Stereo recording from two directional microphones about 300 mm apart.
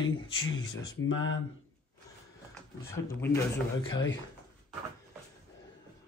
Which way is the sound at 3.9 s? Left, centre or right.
Left.